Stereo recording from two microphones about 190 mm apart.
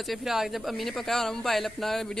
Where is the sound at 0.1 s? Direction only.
Centre (ahead or behind).